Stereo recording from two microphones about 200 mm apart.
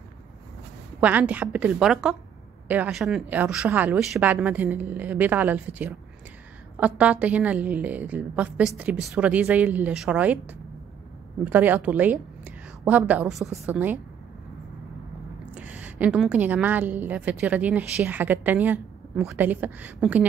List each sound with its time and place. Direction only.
1.0 s a woman's voice: 5° right (ahead or behind)
15.5 s a woman's voice: 10° right (ahead or behind)